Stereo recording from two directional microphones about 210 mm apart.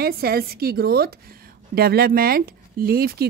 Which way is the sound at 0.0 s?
45° right (ahead or behind).